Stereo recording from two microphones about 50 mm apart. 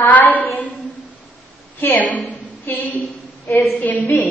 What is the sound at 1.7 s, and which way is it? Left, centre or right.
Speech, left.